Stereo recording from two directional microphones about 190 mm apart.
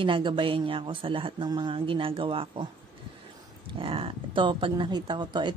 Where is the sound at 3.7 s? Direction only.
25° right (ahead or behind).